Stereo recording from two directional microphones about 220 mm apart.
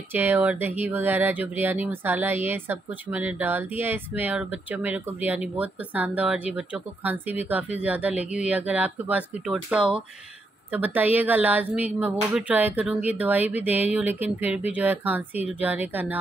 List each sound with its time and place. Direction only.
0.1 s speech: 10° right (ahead or behind)